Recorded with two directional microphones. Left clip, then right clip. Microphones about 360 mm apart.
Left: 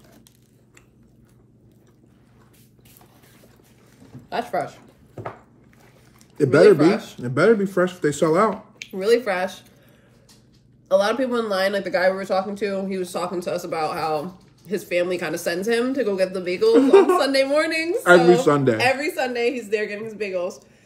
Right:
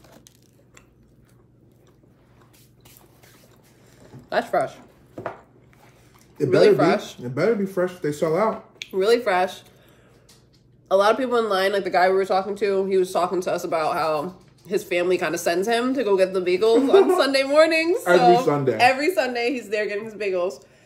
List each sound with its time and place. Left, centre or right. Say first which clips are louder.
4.3 s speech: right 3 dB; centre
6.6 s speech: left 2 dB; centre
7.2 s speech: left 4 dB; left
8.7 s speech: right 1 dB; centre
10.9 s speech: right 1 dB; centre
18.4 s speech: left 3 dB; left
18.8 s speech: right 3 dB; centre